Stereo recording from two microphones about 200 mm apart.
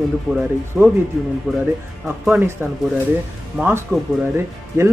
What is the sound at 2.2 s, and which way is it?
Speech, 10° right (ahead or behind).